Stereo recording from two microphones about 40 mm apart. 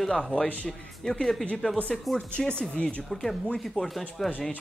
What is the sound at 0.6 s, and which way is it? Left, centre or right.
Speech, centre.